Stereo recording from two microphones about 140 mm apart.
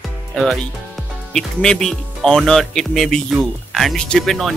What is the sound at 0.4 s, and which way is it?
Speech, centre (ahead or behind).